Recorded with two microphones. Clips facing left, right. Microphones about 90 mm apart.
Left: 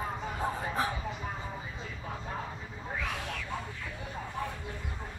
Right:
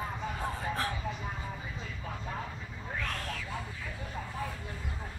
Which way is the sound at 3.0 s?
5° left (ahead or behind).